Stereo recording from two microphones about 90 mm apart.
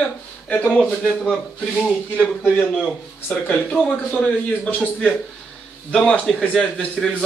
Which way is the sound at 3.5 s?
15° left (ahead or behind).